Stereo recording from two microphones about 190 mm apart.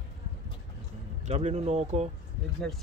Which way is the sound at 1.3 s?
35° right (ahead or behind).